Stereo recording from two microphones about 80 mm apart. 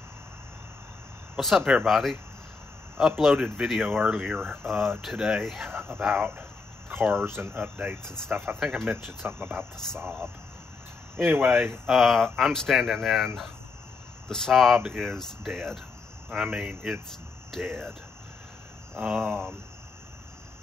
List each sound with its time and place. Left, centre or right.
1.4 s speech: centre
3.2 s speech: centre
3.8 s speech: right
4.1 s speech: centre
5.6 s speech: right
11.2 s speech: right
11.9 s speech: centre
18.9 s speech: centre